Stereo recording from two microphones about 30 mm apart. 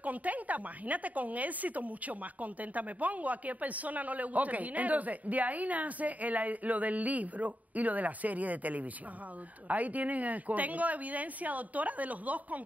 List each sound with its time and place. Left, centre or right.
0.0 s speech: right